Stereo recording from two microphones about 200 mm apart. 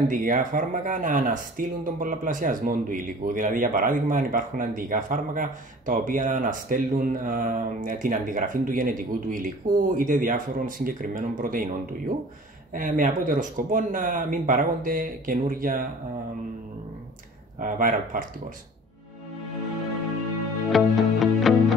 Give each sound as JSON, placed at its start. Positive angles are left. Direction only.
{"t": 0.1, "sound": "speech", "side_deg": -40}
{"t": 12.7, "sound": "speech", "side_deg": -40}
{"t": 17.6, "sound": "speech", "side_deg": -45}
{"t": 20.7, "sound": "music", "side_deg": 0}